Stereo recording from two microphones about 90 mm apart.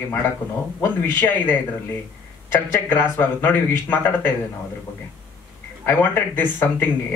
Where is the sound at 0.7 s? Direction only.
25° left (ahead or behind).